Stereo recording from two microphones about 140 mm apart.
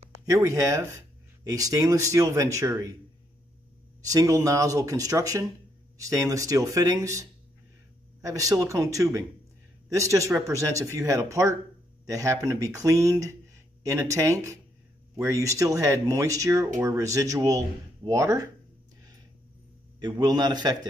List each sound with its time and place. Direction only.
0.2 s speech: 25° right (ahead or behind)
4.1 s speech: 25° right (ahead or behind)
20.0 s speech: 30° right (ahead or behind)